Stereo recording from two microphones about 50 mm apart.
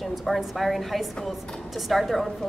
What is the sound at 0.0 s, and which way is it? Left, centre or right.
A woman's voice, centre.